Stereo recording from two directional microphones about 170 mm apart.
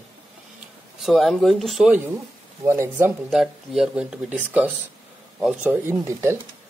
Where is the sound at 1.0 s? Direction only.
Centre (ahead or behind).